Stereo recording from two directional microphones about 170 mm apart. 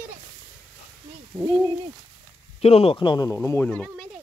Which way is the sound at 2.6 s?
35° left (ahead or behind).